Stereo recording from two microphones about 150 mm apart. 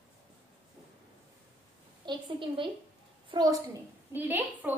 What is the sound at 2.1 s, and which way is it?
A woman's voice, 35° right (ahead or behind).